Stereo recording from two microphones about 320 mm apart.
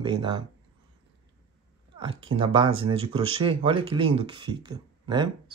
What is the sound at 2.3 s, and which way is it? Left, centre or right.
Speech, centre.